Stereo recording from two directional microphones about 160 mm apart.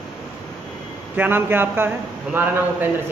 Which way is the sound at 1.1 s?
15° right (ahead or behind).